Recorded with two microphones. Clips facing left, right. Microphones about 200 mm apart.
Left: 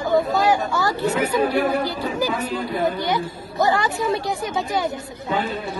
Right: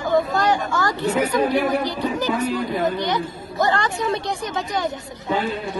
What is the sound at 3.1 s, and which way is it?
A man's voice, 5° left (ahead or behind).